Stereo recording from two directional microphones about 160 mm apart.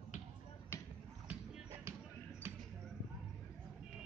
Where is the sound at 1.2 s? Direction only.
15° right (ahead or behind).